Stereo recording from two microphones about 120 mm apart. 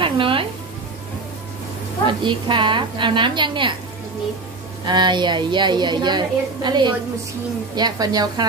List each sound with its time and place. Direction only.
0.0 s speech: 45° right (ahead or behind)
2.0 s a woman's voice: 40° right (ahead or behind)
4.8 s a woman's voice: 40° right (ahead or behind)